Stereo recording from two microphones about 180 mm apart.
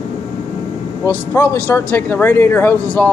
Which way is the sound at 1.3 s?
10° left (ahead or behind).